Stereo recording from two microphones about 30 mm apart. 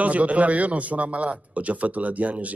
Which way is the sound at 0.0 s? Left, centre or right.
Right.